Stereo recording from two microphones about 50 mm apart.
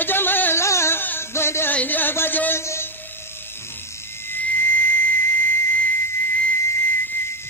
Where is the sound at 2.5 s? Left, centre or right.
Left.